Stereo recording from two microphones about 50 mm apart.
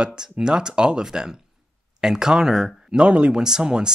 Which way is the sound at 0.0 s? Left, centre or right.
Centre.